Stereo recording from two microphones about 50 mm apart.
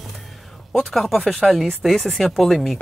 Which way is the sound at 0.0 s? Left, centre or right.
Centre.